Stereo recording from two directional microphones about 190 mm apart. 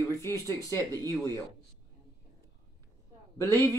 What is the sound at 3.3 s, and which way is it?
Speech, 10° left (ahead or behind).